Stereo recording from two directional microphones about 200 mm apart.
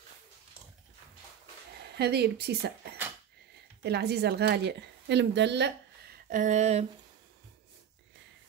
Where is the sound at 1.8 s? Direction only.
55° right (ahead or behind).